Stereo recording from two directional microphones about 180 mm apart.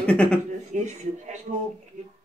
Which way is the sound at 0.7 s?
40° right (ahead or behind).